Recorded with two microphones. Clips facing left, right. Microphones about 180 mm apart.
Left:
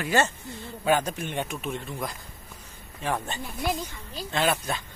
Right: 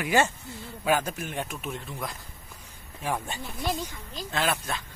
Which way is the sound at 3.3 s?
10° right (ahead or behind).